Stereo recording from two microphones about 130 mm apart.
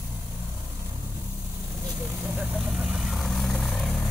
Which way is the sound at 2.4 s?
5° right (ahead or behind).